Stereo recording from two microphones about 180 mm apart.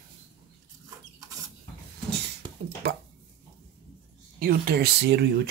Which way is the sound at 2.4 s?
25° right (ahead or behind).